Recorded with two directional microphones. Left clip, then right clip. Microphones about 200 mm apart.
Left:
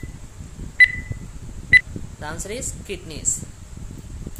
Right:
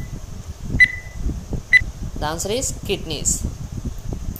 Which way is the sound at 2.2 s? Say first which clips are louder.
Right 8 dB; 20° right (ahead or behind).